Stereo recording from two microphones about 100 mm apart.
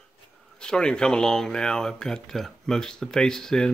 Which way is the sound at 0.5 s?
10° left (ahead or behind).